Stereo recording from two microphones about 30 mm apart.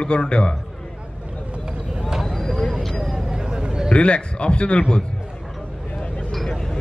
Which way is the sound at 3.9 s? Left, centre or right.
Left.